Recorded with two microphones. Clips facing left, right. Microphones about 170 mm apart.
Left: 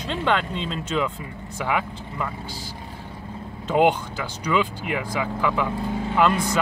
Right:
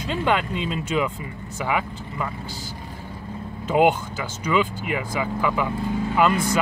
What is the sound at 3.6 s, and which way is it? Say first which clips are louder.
Speech: right 1 dB; 5° right (ahead or behind).